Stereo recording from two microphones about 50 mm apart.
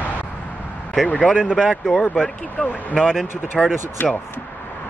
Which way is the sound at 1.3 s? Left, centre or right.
Centre.